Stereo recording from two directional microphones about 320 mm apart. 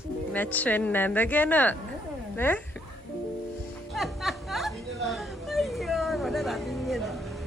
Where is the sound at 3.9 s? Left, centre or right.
Centre.